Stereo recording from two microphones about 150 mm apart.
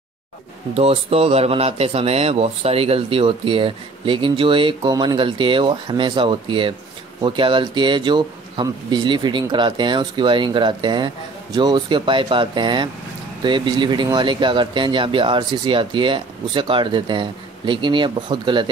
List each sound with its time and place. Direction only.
0.7 s speech: 40° right (ahead or behind)